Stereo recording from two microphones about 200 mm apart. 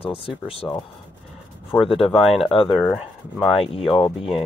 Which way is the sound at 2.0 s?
Centre (ahead or behind).